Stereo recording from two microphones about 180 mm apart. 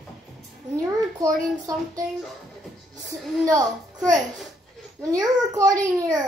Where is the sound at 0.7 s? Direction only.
20° right (ahead or behind).